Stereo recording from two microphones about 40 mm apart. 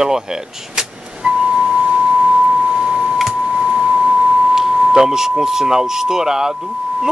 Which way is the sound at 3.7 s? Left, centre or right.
Right.